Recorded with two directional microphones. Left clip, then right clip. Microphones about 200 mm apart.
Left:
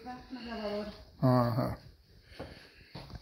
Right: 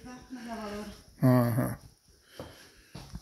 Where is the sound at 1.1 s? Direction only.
40° right (ahead or behind).